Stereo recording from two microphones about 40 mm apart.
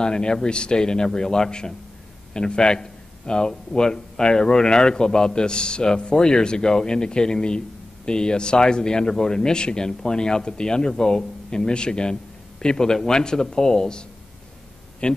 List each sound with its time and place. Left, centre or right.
0.0 s a man's voice: centre